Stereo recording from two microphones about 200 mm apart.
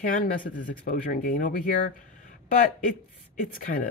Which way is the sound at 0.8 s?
45° left (ahead or behind).